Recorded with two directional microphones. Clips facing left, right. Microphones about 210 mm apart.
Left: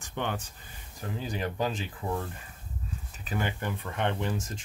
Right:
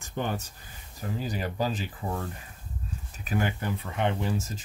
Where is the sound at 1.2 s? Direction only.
35° right (ahead or behind).